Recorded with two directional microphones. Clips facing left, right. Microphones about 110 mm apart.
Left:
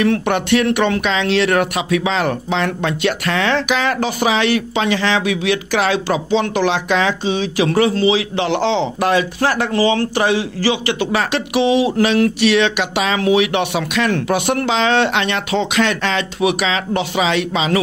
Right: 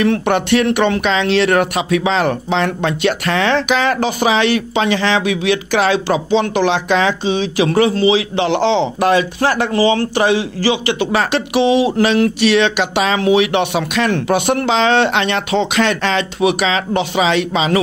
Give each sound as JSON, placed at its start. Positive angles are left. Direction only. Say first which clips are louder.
{"t": 0.0, "sound": "speech", "louder": "right 2 dB", "side_deg": -30}